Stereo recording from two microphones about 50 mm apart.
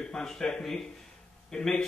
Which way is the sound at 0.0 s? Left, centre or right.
Centre.